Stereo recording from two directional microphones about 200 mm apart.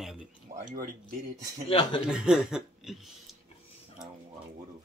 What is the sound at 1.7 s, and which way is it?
Speech, 25° left (ahead or behind).